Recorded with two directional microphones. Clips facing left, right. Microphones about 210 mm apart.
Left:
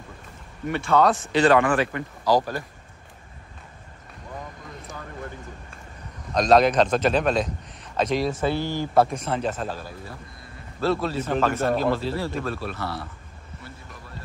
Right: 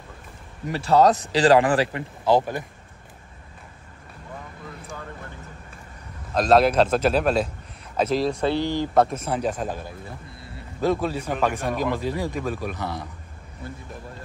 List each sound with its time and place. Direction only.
0.7 s a man's voice: 35° right (ahead or behind)
6.3 s a man's voice: 5° right (ahead or behind)
9.1 s speech: 10° right (ahead or behind)